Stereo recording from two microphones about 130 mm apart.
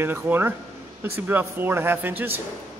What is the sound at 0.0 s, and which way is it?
A man's voice, 15° right (ahead or behind).